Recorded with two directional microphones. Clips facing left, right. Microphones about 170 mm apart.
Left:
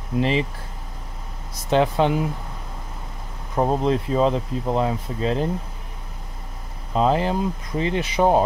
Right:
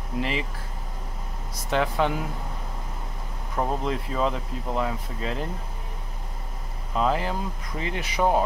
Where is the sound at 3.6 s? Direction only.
30° left (ahead or behind).